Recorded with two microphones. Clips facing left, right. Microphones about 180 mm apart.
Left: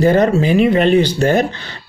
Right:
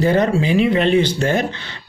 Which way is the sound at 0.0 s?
45° left (ahead or behind).